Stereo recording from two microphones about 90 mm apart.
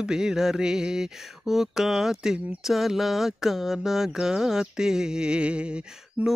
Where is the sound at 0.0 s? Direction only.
5° right (ahead or behind).